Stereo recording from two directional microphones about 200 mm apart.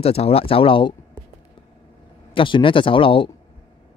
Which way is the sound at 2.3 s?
25° left (ahead or behind).